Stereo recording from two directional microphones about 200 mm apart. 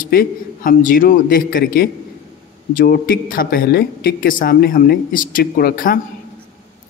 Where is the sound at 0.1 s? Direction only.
45° left (ahead or behind).